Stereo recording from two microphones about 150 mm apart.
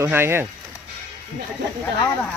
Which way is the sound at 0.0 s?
15° right (ahead or behind).